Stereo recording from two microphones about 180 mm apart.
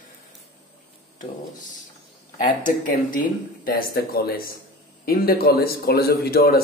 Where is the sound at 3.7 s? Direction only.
55° left (ahead or behind).